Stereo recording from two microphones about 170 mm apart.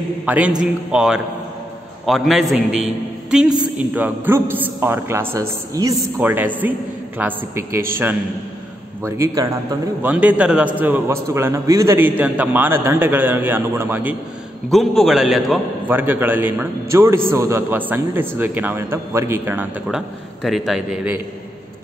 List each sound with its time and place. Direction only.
0.2 s a man's voice: 10° right (ahead or behind)
9.0 s a man's voice: 15° right (ahead or behind)
10.0 s a man's voice: 10° right (ahead or behind)
14.7 s a man's voice: centre (ahead or behind)
15.9 s a man's voice: 10° right (ahead or behind)
20.4 s a man's voice: centre (ahead or behind)